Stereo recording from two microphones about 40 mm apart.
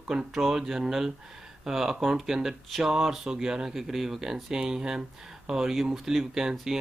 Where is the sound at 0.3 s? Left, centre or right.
Centre.